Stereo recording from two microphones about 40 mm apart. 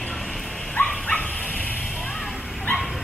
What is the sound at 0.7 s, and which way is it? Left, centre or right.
Dog, left.